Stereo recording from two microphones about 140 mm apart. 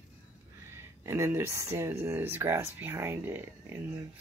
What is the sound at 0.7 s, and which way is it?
Speech, 20° right (ahead or behind).